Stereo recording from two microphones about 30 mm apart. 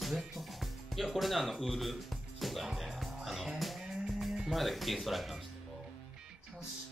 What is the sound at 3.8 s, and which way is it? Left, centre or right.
Music, centre.